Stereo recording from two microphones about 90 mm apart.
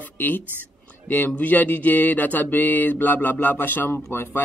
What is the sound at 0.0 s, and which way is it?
Whispering, 20° left (ahead or behind).